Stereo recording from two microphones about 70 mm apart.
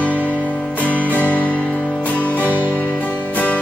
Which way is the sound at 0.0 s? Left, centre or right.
Left.